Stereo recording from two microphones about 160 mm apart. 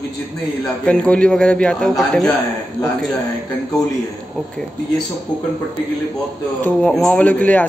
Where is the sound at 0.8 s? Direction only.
5° left (ahead or behind).